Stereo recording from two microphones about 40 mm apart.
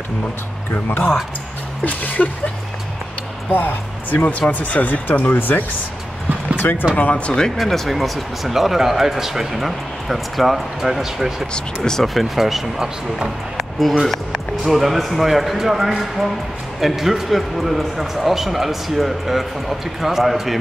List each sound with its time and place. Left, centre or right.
0.8 s speech: left
1.9 s speech: left
3.5 s speech: left
5.0 s speech: left
6.6 s speech: left
7.0 s speech: left
7.5 s speech: centre
11.5 s speech: centre
12.0 s speech: centre
13.6 s a sound: centre
14.6 s speech: centre